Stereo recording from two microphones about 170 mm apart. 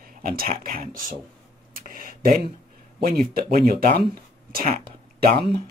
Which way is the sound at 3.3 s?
60° right (ahead or behind).